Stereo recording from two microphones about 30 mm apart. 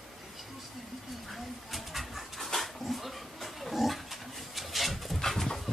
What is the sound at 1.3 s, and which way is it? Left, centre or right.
Dog, centre.